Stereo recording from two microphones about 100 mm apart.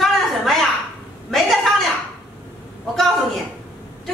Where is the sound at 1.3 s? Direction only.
Centre (ahead or behind).